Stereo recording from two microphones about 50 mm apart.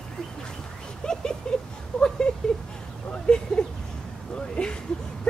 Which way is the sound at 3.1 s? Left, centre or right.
Centre.